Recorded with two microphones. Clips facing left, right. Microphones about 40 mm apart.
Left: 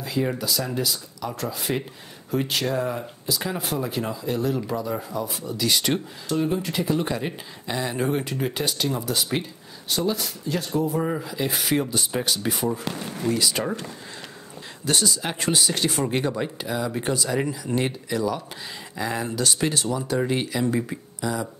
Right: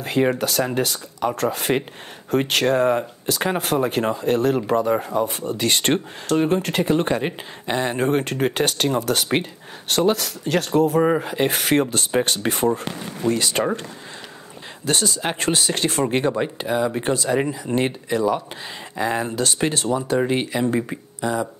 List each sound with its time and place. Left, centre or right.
0.0 s speech: right
11.0 s speech: right
12.1 s speech: right
12.4 s speech: right
13.3 s speech: right
14.9 s speech: right
16.2 s speech: right